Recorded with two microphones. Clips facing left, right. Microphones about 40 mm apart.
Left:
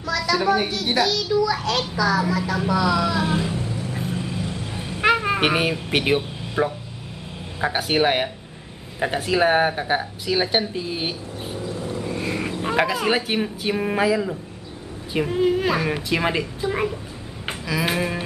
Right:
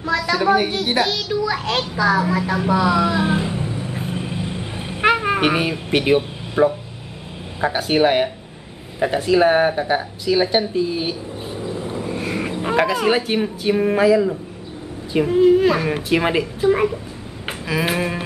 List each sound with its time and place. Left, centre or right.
0.1 s a sound: right
0.8 s a child's voice: right
2.2 s vehicle: right
5.1 s a sound: centre
5.4 s speech: centre
6.6 s a woman's voice: centre
7.6 s speech: centre
11.6 s vehicle: right
12.0 s a sound: centre
12.6 s speech: centre
16.1 s a woman's voice: centre